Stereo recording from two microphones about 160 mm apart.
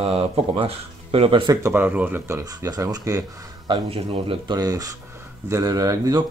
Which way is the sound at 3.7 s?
35° right (ahead or behind).